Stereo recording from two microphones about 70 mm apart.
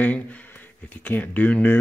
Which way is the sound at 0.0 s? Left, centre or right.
Left.